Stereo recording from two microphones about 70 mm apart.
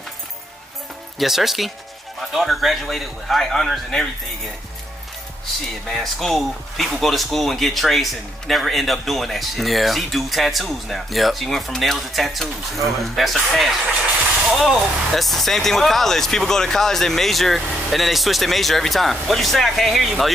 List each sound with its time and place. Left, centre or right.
1.1 s speech: centre
5.9 s speech: centre